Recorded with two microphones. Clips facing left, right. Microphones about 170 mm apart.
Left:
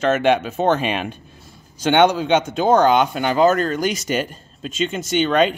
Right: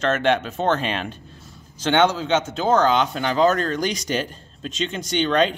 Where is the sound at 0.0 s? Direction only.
10° left (ahead or behind).